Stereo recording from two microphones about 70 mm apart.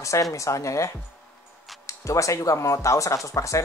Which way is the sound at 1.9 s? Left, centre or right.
Left.